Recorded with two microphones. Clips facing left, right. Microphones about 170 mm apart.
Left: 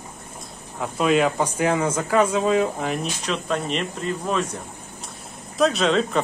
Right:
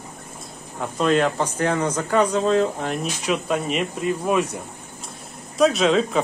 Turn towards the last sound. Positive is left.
turn(degrees=0)  # may be behind; listen again after turning